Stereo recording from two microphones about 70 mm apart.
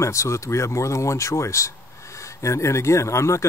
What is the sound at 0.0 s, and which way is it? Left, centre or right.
Speech, left.